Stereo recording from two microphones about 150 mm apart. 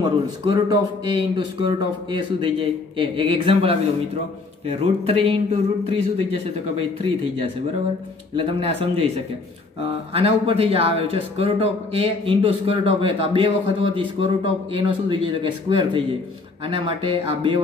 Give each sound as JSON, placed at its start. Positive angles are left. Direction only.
{"t": 0.0, "sound": "speech", "side_deg": -30}